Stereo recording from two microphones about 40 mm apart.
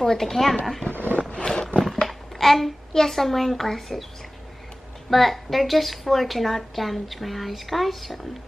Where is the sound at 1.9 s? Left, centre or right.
Centre.